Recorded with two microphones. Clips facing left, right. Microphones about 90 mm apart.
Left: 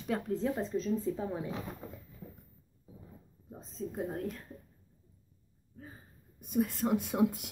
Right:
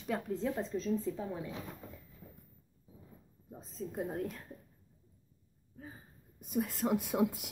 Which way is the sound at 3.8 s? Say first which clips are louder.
Left 2 dB; 5° left (ahead or behind).